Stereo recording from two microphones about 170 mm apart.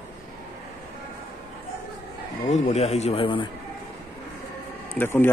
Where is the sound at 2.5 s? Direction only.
40° left (ahead or behind).